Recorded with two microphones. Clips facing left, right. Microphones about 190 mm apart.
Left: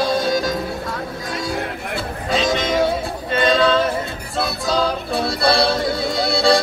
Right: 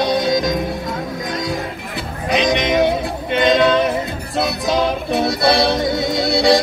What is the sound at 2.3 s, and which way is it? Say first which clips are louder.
Music: right 3 dB; 20° right (ahead or behind).